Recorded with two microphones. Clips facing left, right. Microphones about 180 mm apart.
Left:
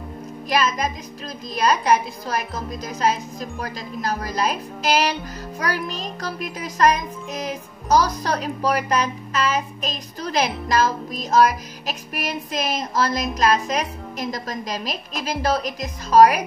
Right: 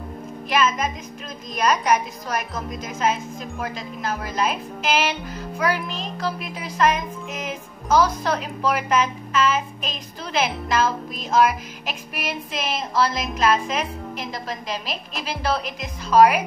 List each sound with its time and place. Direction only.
0.5 s music: 35° left (ahead or behind)